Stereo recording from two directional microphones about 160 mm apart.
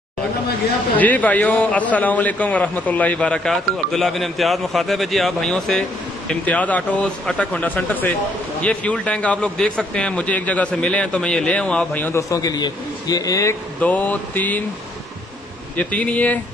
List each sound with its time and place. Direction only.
0.9 s a man's voice: 10° left (ahead or behind)
15.7 s a man's voice: 10° left (ahead or behind)